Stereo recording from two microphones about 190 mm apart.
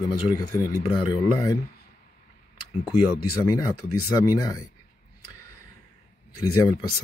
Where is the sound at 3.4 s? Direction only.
20° left (ahead or behind).